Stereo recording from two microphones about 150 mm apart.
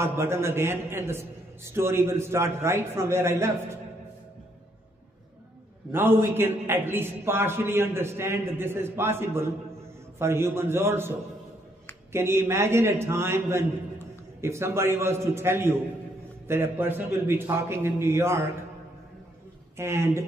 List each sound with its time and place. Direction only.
0.0 s a man's voice: 15° right (ahead or behind)
5.9 s a man's voice: 15° right (ahead or behind)
19.8 s a man's voice: 15° right (ahead or behind)